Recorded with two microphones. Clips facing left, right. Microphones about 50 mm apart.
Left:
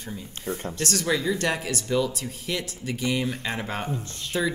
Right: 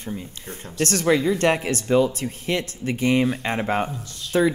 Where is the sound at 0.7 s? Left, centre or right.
Right.